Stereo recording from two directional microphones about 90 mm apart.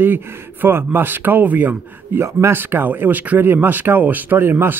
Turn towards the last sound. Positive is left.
turn(degrees=-25)  # may be behind; listen again after turning